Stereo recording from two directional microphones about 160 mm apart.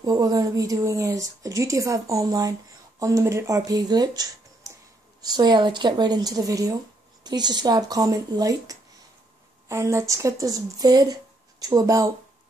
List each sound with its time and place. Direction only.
0.0 s speech: 25° right (ahead or behind)